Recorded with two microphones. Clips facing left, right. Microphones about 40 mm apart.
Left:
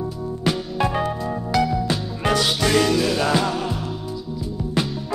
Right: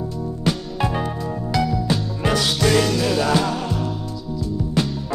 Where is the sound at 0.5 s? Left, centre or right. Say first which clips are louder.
Left 1 dB; centre.